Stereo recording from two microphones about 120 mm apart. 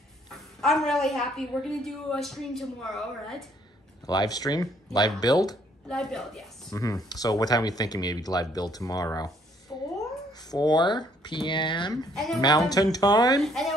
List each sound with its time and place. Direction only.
0.3 s a woman's voice: centre (ahead or behind)
4.0 s speech: 35° left (ahead or behind)
5.9 s a woman's voice: 5° left (ahead or behind)
6.7 s speech: 30° left (ahead or behind)
10.3 s speech: 35° left (ahead or behind)
12.0 s a woman's voice: centre (ahead or behind)
12.4 s speech: 35° left (ahead or behind)
13.4 s a woman's voice: centre (ahead or behind)